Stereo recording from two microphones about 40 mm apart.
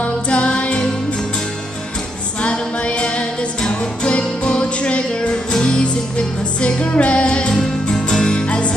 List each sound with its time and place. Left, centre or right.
0.0 s music: left
2.4 s music: left
7.5 s music: centre